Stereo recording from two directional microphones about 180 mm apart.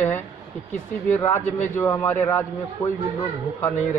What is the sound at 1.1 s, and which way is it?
A man's voice, 10° left (ahead or behind).